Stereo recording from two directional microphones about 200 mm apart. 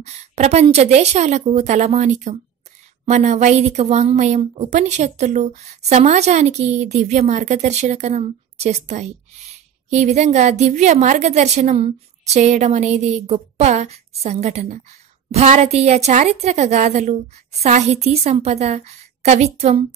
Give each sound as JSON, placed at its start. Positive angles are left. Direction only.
{"t": 0.0, "sound": "a woman's voice", "side_deg": -35}